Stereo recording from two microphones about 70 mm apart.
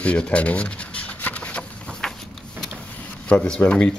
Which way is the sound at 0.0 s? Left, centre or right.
Centre.